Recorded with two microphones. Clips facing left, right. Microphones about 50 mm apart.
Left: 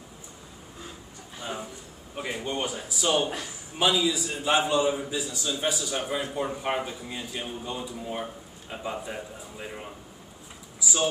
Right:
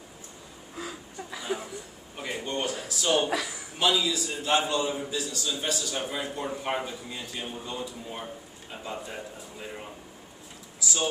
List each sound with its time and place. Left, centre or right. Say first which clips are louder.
0.7 s a sound: right 7 dB; right
2.1 s a man's voice: left 1 dB; centre
3.3 s a man's voice: right 4 dB; right
3.9 s a man's voice: left 2 dB; centre